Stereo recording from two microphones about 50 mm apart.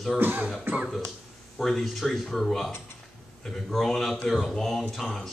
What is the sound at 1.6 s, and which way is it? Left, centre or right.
A man's voice, centre.